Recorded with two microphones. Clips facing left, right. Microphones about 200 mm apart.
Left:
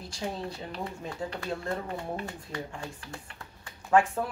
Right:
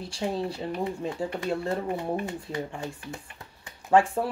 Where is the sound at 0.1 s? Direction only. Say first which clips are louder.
Right 5 dB; 30° right (ahead or behind).